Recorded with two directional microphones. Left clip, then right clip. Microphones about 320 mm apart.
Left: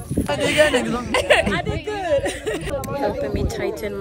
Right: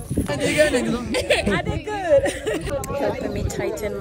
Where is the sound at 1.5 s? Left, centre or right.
Centre.